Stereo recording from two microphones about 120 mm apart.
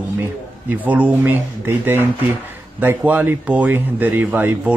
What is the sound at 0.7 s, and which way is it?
Speech, 15° right (ahead or behind).